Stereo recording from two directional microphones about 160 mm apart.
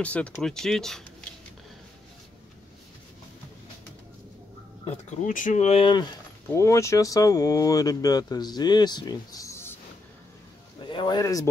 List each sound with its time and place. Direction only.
0.0 s speech: 10° left (ahead or behind)
4.8 s speech: 50° left (ahead or behind)
6.5 s speech: 20° left (ahead or behind)
10.9 s speech: 25° left (ahead or behind)